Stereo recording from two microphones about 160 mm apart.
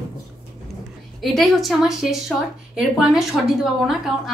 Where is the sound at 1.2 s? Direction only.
Centre (ahead or behind).